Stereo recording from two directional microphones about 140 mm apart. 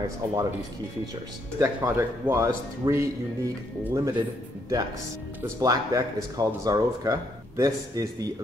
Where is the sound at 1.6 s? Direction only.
20° right (ahead or behind).